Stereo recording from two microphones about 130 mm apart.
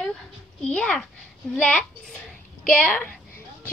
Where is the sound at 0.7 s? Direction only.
5° left (ahead or behind).